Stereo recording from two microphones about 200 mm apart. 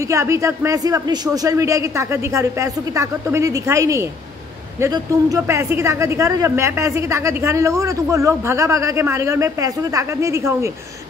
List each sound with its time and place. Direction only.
0.0 s a woman's voice: 15° right (ahead or behind)